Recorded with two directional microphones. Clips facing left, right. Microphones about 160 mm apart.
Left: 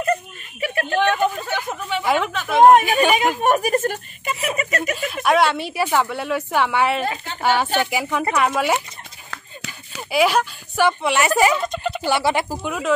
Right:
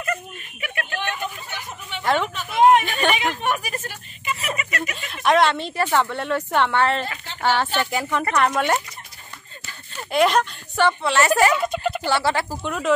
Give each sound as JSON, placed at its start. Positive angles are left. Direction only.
{"t": 0.0, "sound": "a sound", "side_deg": 35}
{"t": 1.1, "sound": "speech", "side_deg": 70}
{"t": 2.3, "sound": "speech", "side_deg": 85}
{"t": 2.8, "sound": "speech", "side_deg": 10}
{"t": 3.2, "sound": "speech", "side_deg": 45}
{"t": 5.1, "sound": "speech", "side_deg": 5}
{"t": 9.9, "sound": "speech", "side_deg": 5}
{"t": 11.5, "sound": "a sound", "side_deg": -5}
{"t": 12.1, "sound": "speech", "side_deg": 15}